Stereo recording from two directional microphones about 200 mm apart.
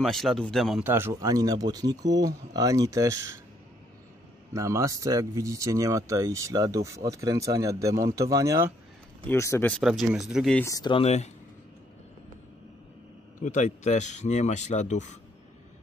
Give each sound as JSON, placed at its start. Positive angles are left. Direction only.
{"t": 0.0, "sound": "speech", "side_deg": 0}
{"t": 4.6, "sound": "speech", "side_deg": -15}
{"t": 9.2, "sound": "speech", "side_deg": 10}
{"t": 10.6, "sound": "speech", "side_deg": 20}
{"t": 13.4, "sound": "speech", "side_deg": 35}